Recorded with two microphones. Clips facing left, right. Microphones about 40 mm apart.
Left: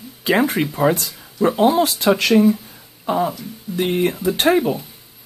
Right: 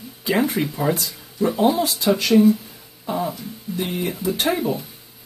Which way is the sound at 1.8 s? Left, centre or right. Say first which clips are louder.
Left 4 dB; left.